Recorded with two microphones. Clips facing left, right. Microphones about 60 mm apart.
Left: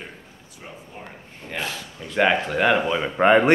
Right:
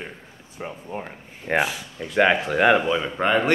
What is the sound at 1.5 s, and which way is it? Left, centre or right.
Speech, right.